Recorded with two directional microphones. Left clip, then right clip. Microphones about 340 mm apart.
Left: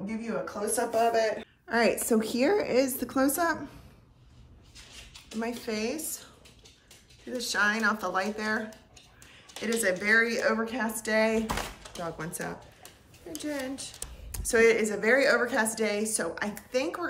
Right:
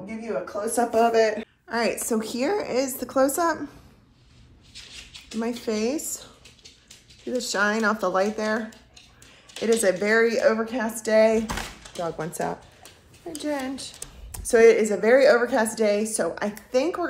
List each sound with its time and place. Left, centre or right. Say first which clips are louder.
0.7 s speech: right 6 dB; right
1.7 s speech: even; centre
5.4 s a child's voice: right 6 dB; centre
13.9 s speech: right 2 dB; centre